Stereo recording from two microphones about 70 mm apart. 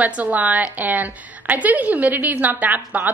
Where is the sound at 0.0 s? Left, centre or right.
Right.